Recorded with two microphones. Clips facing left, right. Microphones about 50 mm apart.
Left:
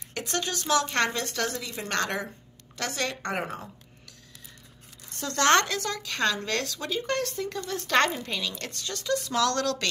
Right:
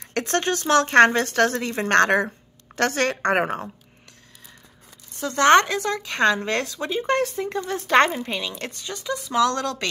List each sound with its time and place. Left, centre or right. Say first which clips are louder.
0.2 s speech: right 8 dB; right
5.2 s speech: right 6 dB; centre